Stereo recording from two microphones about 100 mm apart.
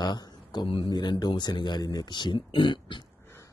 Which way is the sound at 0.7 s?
50° left (ahead or behind).